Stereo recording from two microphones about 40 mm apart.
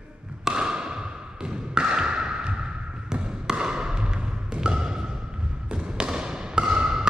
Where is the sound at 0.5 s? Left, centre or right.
Centre.